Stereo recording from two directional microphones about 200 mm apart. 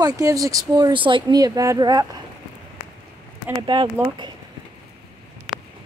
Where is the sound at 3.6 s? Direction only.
20° right (ahead or behind).